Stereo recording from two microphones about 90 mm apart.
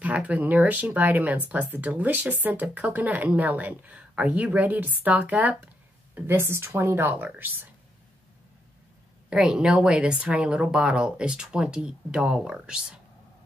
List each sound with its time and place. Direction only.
0.0 s speech: 15° right (ahead or behind)
9.3 s speech: 10° right (ahead or behind)